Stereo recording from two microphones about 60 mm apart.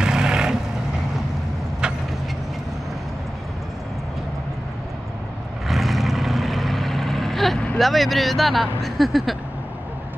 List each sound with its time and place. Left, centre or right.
0.0 s vehicle: centre
5.7 s vehicle: centre
7.8 s speech: centre